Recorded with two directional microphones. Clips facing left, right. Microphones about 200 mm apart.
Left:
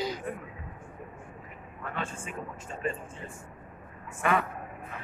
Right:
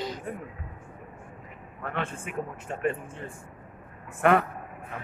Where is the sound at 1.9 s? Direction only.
60° right (ahead or behind).